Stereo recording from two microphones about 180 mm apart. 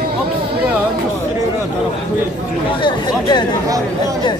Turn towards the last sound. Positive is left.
turn(degrees=25)  # may be behind; listen again after turning